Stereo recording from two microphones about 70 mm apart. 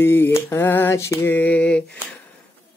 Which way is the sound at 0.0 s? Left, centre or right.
Left.